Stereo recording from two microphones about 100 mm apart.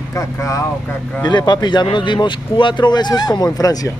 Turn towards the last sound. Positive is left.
turn(degrees=40)  # may be behind; listen again after turning